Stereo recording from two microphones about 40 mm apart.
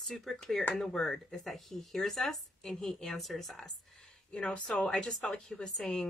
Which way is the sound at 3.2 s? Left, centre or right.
Centre.